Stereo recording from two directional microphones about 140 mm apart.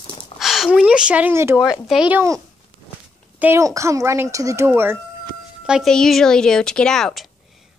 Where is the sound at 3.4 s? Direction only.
20° right (ahead or behind).